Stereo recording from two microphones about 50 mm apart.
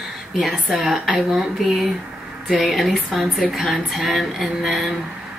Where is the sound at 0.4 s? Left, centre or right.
Centre.